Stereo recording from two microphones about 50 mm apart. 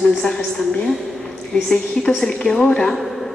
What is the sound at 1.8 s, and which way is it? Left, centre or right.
A woman's voice, centre.